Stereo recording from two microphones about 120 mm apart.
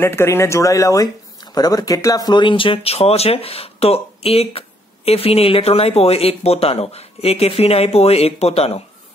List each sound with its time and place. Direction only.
0.0 s speech: 20° left (ahead or behind); by 8.8 s 55° left (ahead or behind)